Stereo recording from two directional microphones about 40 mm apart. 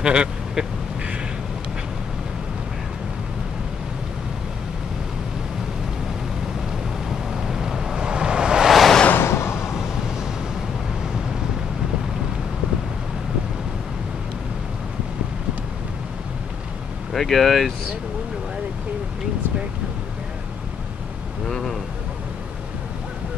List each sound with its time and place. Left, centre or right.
0.0 s vehicle: right
7.1 s waves: centre
8.6 s waves: centre
9.1 s a sound: left
17.1 s speech: centre
21.5 s a sound: centre